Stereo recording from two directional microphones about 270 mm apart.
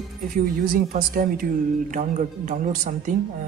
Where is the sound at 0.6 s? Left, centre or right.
Right.